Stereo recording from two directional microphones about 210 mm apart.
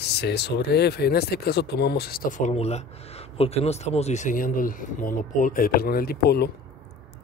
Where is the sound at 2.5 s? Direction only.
30° left (ahead or behind).